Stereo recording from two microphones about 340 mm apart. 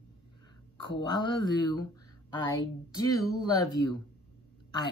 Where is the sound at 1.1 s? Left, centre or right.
Centre.